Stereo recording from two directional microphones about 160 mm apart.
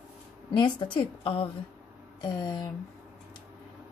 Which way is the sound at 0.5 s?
30° left (ahead or behind).